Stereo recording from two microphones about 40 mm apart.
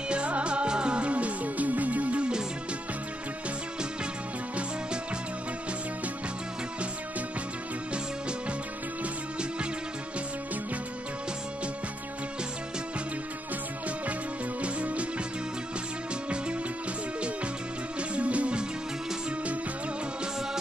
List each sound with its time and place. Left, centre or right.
0.1 s music: right
7.9 s music: right
14.6 s music: right
18.1 s music: right